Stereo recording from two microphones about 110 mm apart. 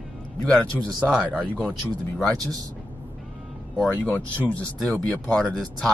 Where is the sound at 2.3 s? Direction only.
35° right (ahead or behind).